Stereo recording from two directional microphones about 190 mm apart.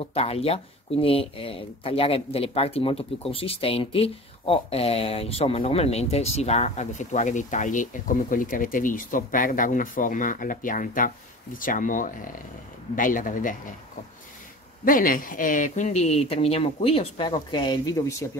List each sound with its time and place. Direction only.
0.1 s speech: 30° left (ahead or behind)
14.9 s speech: 45° left (ahead or behind); by 18.0 s 20° left (ahead or behind)